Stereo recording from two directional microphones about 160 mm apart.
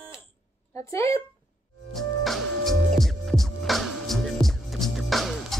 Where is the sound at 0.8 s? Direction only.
20° left (ahead or behind).